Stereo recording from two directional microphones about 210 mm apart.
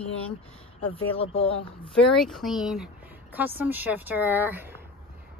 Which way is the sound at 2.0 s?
Centre (ahead or behind).